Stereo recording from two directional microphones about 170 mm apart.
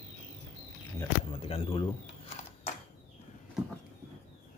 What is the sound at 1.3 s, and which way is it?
Speech, 35° left (ahead or behind).